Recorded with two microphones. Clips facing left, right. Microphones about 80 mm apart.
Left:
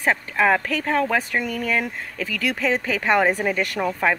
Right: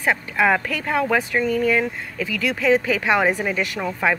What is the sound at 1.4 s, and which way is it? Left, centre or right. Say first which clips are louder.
Speech: right 6 dB; left.